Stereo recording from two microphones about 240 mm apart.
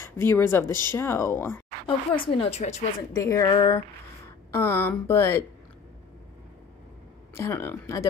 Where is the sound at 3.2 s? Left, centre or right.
Centre.